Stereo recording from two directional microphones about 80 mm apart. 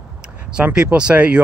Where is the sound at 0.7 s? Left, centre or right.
Centre.